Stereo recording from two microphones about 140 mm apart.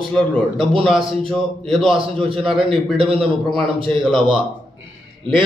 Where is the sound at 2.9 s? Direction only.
40° right (ahead or behind).